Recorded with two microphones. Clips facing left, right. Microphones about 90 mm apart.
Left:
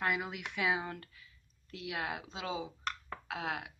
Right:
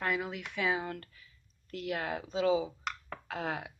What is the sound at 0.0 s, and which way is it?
Speech, 5° left (ahead or behind).